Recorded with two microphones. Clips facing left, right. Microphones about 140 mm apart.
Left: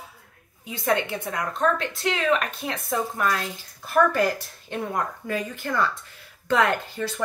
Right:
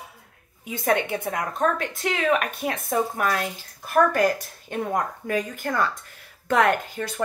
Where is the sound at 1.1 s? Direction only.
50° right (ahead or behind).